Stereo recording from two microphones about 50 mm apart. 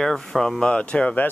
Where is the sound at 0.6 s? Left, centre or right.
Left.